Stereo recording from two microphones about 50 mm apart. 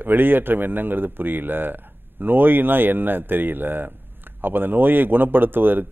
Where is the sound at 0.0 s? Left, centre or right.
Right.